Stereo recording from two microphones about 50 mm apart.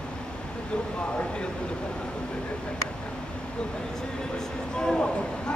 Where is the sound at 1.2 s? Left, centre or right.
Centre.